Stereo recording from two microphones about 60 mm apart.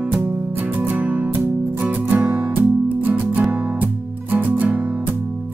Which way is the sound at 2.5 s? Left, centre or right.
Right.